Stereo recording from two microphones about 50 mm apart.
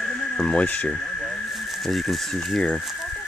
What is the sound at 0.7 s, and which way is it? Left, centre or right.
Speech, left.